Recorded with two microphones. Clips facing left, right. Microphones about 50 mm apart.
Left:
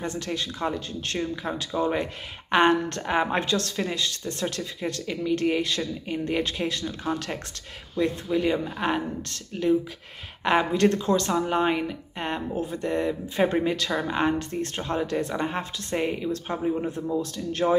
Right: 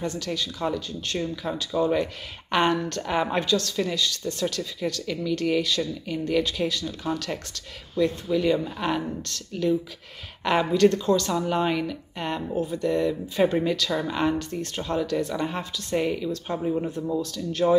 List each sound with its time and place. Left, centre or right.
0.0 s a woman's voice: left